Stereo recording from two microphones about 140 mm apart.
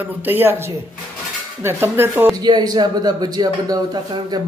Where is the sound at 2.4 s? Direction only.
30° right (ahead or behind).